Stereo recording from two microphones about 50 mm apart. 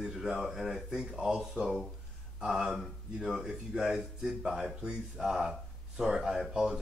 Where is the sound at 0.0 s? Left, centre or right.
Centre.